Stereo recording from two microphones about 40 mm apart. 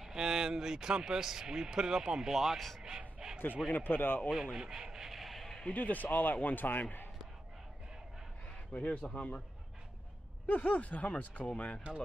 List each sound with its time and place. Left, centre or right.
0.0 s speech: centre
3.2 s a sound: centre
3.6 s speech: left
4.3 s rub: centre
5.7 s speech: left
8.7 s a man's voice: left
10.4 s speech: left